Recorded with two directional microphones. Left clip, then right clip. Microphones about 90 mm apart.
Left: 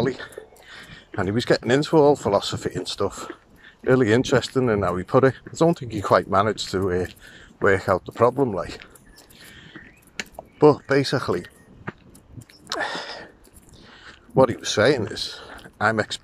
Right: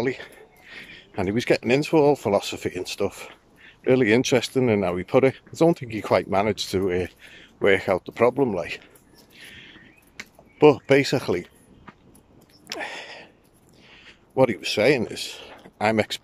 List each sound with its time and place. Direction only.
0.0 s speech: 30° right (ahead or behind)
5.9 s speech: 20° right (ahead or behind)
9.4 s whispering: 35° right (ahead or behind)
10.6 s speech: 35° right (ahead or behind)
12.6 s a sound: 25° right (ahead or behind)
13.8 s speech: 25° right (ahead or behind)